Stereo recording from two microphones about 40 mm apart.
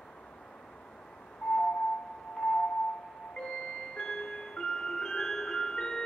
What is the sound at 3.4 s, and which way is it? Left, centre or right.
Music, centre.